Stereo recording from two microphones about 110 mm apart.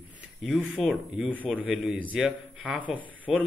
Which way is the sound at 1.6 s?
10° right (ahead or behind).